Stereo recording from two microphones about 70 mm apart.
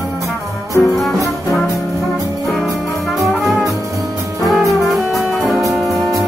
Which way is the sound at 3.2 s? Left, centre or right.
Centre.